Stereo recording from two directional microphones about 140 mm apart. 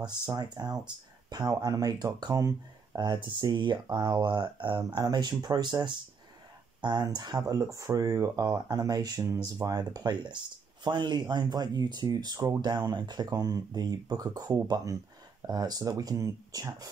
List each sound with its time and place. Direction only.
0.3 s speech: 30° right (ahead or behind)